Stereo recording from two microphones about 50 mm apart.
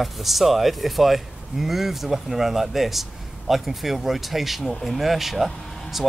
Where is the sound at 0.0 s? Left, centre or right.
Centre.